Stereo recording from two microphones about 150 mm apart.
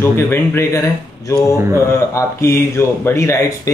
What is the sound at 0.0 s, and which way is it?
Speech, 15° left (ahead or behind).